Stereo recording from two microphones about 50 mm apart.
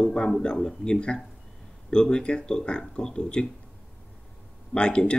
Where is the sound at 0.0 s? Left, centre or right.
Centre.